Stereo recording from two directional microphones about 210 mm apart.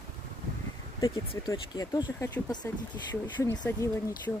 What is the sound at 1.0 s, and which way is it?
Speech, 15° left (ahead or behind).